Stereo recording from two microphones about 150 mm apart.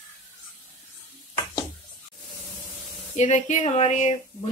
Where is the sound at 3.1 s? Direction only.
50° left (ahead or behind).